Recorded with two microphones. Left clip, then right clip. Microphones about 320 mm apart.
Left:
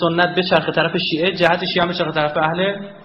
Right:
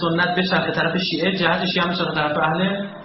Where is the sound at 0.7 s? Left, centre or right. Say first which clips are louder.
Left 3 dB; left.